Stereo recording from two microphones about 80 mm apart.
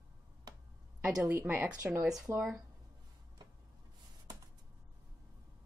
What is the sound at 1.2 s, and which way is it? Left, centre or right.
Speech, right.